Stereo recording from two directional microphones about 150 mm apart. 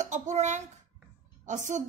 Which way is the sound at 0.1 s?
50° right (ahead or behind).